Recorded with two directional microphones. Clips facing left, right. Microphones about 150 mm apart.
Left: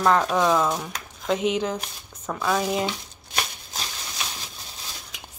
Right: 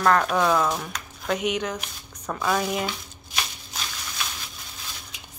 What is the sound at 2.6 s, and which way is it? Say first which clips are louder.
Speech: left 2 dB; 25° left (ahead or behind).